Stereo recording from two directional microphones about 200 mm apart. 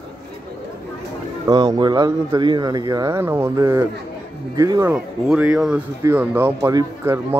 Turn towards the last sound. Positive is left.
turn(degrees=-15)  # may be behind; listen again after turning